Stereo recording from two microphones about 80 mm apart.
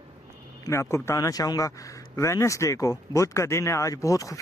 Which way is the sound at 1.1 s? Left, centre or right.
Left.